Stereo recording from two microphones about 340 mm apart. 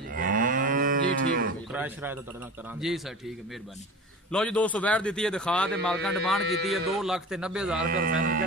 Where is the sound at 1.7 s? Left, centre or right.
Centre.